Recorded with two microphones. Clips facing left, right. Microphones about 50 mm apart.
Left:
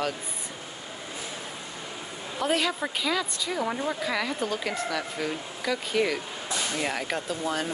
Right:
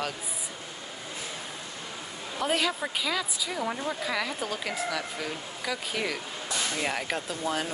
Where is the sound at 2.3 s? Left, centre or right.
Centre.